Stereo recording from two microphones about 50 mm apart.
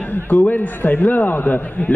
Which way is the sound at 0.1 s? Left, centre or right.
Left.